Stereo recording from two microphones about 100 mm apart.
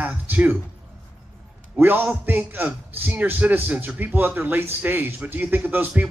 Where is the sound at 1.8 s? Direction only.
20° right (ahead or behind).